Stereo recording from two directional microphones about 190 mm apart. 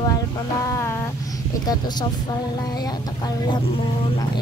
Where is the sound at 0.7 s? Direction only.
15° left (ahead or behind).